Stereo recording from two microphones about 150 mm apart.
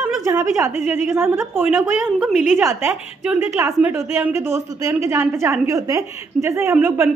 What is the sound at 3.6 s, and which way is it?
A woman's voice, 15° right (ahead or behind).